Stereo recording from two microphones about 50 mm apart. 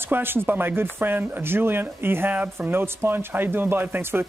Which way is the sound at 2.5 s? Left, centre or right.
Right.